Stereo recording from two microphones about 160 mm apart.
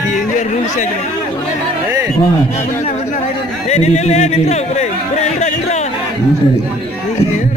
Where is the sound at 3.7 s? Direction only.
45° left (ahead or behind).